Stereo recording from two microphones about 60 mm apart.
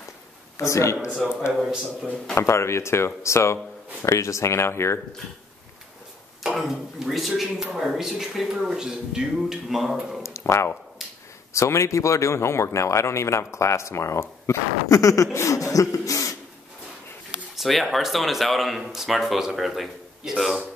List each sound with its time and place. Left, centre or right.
0.6 s a man's voice: left
1.2 s speech: centre
2.3 s speech: left
4.0 s speech: left
6.4 s speech: centre
10.2 s a sound: left
11.5 s speech: left
17.6 s speech: centre